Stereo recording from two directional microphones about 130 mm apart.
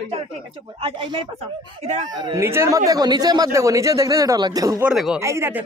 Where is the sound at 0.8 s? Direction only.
45° right (ahead or behind).